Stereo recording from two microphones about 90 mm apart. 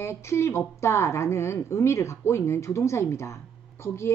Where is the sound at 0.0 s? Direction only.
30° left (ahead or behind).